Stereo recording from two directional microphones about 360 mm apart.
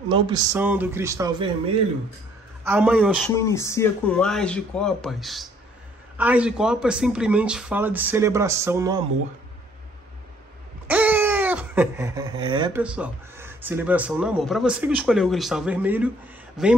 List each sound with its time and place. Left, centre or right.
0.1 s speech: centre
2.6 s speech: centre
3.3 s speech: centre
10.9 s speech: centre